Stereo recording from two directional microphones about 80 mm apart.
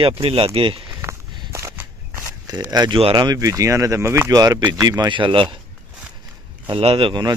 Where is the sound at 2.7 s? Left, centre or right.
Right.